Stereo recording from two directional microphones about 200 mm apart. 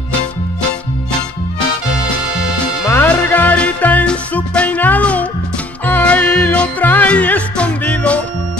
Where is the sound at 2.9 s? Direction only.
10° left (ahead or behind).